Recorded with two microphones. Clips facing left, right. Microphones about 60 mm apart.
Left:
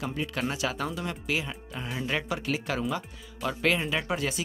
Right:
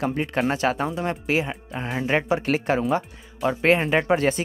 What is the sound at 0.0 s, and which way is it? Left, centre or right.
Speech, right.